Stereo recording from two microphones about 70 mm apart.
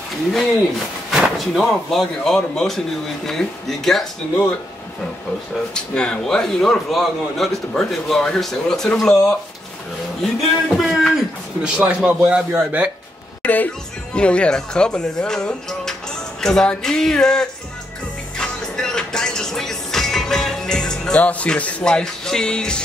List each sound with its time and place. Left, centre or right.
1.1 s speech: centre
5.9 s a man's voice: centre
10.2 s speech: centre
11.1 s speech: centre
13.4 s music: left
14.1 s a man's voice: centre
18.4 s music: centre
21.2 s a man's voice: centre